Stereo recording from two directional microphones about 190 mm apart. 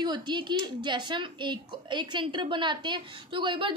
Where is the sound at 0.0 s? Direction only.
25° right (ahead or behind).